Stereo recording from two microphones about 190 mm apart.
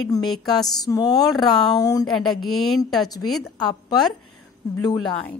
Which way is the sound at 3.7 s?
20° left (ahead or behind).